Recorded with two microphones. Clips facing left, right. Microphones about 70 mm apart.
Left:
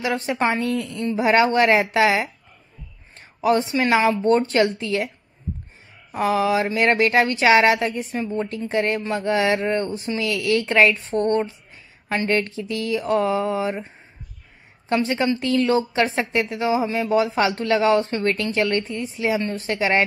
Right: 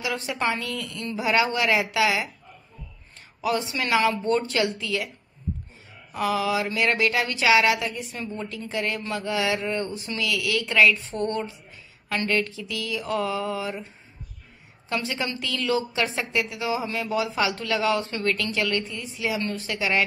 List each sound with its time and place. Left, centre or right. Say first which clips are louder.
0.0 s speech: left 5 dB; left
6.1 s speech: left 5 dB; left
14.9 s speech: left 8 dB; left